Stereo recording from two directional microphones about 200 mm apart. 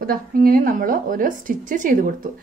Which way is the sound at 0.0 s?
45° right (ahead or behind).